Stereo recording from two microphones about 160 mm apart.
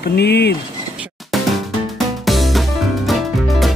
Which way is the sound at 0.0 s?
90° left.